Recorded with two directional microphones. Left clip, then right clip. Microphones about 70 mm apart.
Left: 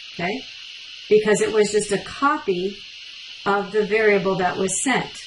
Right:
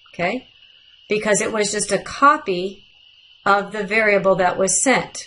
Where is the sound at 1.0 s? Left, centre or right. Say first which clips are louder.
Left 2 dB; centre.